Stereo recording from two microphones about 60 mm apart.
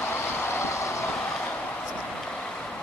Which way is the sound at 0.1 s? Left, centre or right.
Left.